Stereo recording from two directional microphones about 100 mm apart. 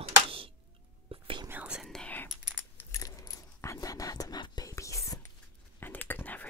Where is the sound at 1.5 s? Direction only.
15° right (ahead or behind).